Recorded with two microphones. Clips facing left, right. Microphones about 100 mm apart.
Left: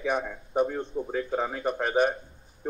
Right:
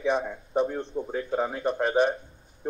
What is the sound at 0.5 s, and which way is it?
A man's voice, 5° left (ahead or behind).